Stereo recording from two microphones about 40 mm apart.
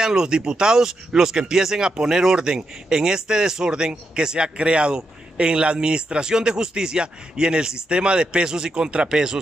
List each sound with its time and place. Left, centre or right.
0.0 s speech: centre